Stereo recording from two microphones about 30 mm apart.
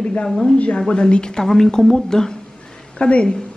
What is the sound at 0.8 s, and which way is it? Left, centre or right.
Speech, left.